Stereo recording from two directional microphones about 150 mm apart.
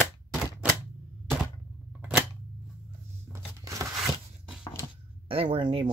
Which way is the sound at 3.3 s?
20° right (ahead or behind).